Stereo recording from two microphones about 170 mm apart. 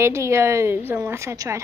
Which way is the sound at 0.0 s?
15° right (ahead or behind).